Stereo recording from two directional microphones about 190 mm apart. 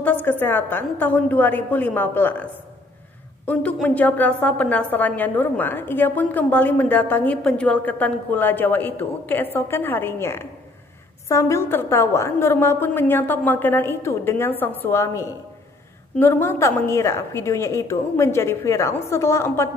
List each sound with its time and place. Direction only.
0.0 s a woman's voice: 10° left (ahead or behind)
3.4 s a woman's voice: 5° left (ahead or behind)